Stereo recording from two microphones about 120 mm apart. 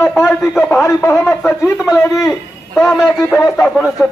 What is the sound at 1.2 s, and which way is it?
Speech, 5° left (ahead or behind).